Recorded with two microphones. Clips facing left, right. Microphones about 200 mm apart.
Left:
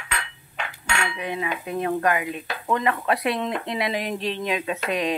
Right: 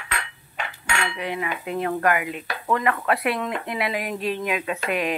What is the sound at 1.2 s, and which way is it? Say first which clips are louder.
Speech: even; 20° left (ahead or behind).